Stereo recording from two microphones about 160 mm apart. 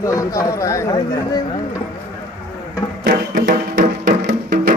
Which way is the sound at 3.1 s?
65° right (ahead or behind).